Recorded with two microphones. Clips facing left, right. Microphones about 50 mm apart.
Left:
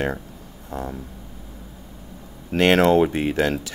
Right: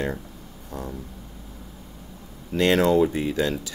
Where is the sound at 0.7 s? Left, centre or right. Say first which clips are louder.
Left 4 dB; left.